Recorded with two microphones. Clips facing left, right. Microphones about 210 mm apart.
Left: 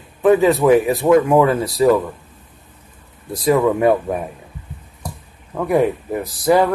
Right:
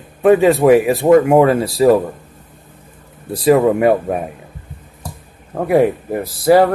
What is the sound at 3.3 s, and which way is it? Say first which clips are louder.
Speech: right 4 dB; 30° right (ahead or behind).